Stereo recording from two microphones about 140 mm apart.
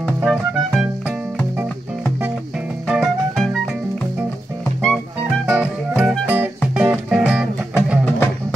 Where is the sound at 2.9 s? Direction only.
5° right (ahead or behind).